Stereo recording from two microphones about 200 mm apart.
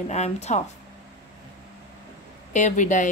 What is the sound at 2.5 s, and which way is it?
Speech, 40° left (ahead or behind).